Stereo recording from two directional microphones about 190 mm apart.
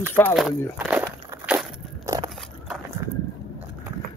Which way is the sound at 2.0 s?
20° right (ahead or behind).